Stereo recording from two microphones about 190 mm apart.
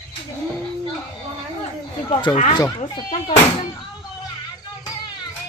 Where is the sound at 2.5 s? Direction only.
25° left (ahead or behind).